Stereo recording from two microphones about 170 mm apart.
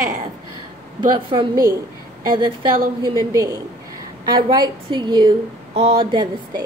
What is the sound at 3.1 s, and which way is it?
A woman's voice, 20° right (ahead or behind).